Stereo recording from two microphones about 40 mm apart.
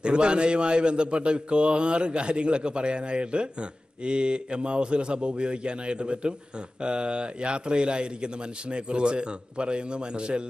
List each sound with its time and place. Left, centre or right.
0.0 s a man's voice: right